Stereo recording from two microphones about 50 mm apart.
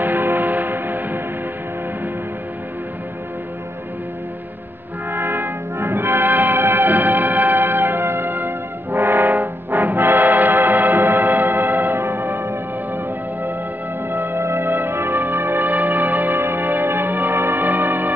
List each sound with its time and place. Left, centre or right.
0.0 s music: right
5.1 s music: right
16.3 s music: right